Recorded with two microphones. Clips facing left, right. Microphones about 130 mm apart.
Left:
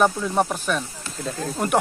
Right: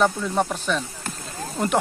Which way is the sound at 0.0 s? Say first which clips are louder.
Left 1 dB; 10° left (ahead or behind).